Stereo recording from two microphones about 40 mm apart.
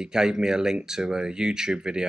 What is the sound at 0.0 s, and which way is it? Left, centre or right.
Speech, centre.